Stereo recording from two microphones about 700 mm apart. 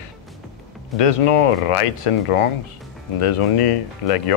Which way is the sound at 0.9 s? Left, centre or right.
Left.